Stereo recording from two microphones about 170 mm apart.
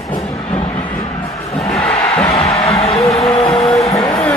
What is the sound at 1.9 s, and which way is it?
Music, 35° left (ahead or behind).